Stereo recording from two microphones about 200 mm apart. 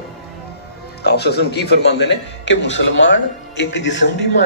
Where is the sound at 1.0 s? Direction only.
55° left (ahead or behind).